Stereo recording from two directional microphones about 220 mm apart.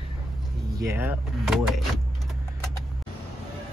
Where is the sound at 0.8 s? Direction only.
10° right (ahead or behind).